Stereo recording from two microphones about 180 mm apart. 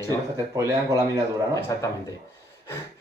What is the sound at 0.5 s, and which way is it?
Speech, 15° right (ahead or behind).